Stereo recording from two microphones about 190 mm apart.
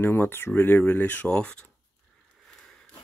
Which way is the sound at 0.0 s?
10° left (ahead or behind).